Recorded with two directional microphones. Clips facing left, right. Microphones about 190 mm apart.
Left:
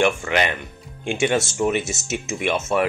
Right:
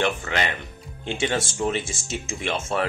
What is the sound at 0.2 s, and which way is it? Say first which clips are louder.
Speech: left 5 dB; 20° left (ahead or behind).